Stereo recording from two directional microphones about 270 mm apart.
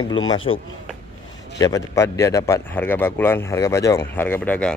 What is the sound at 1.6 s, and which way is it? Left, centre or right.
Speech, centre.